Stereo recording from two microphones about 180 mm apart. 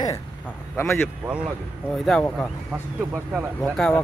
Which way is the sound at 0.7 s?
15° left (ahead or behind).